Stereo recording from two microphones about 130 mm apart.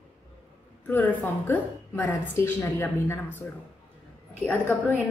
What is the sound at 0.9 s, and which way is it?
A woman's voice, 15° left (ahead or behind).